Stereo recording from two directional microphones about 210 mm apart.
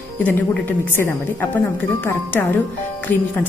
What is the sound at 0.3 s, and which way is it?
A woman's voice, 10° left (ahead or behind).